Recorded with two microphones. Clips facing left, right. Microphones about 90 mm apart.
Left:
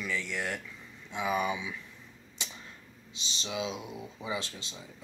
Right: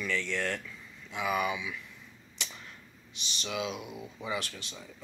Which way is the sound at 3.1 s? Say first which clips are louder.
Right 1 dB; 25° left (ahead or behind).